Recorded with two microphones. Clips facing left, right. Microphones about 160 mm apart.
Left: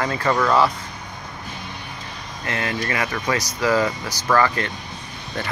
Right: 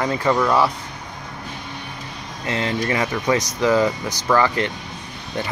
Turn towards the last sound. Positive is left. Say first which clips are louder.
# right 1 dB
turn(degrees=-15)  # may be behind; listen again after turning